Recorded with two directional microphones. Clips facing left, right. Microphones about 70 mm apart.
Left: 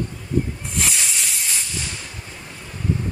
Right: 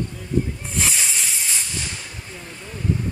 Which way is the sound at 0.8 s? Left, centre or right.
Centre.